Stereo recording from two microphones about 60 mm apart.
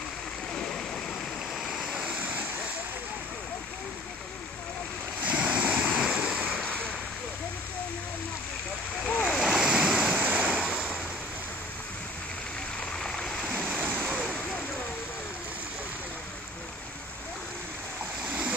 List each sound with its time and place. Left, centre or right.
0.6 s waterfall: centre
1.6 s vehicle: centre
2.0 s vehicle: right
5.2 s waves: right
9.0 s splash: centre
9.6 s waves: centre
10.1 s waves: right
12.9 s stream: centre